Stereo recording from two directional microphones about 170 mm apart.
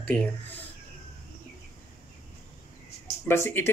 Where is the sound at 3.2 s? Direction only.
15° left (ahead or behind).